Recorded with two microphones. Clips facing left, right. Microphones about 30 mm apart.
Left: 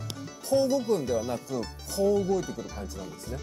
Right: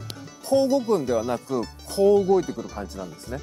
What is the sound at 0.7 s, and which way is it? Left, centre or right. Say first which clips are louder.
Speech: right 4 dB; centre.